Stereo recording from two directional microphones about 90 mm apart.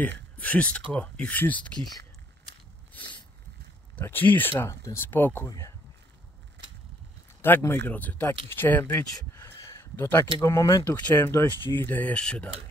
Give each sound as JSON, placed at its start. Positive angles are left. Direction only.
{"t": 0.0, "sound": "speech", "side_deg": 15}
{"t": 3.9, "sound": "speech", "side_deg": 20}
{"t": 5.5, "sound": "speech", "side_deg": 40}
{"t": 7.4, "sound": "speech", "side_deg": 25}
{"t": 9.4, "sound": "a sound", "side_deg": 30}
{"t": 10.4, "sound": "speech", "side_deg": 30}
{"t": 11.0, "sound": "speech", "side_deg": 20}